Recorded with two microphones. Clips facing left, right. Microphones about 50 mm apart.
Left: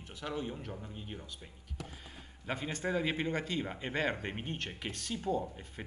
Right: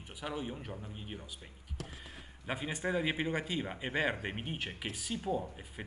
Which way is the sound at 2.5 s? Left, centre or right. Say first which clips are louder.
Even; centre.